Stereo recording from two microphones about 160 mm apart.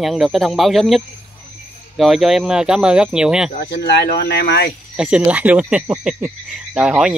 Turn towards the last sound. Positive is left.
turn(degrees=-5)  # may be behind; listen again after turning